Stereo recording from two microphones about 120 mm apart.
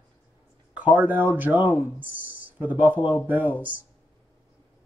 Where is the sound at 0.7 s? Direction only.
10° right (ahead or behind).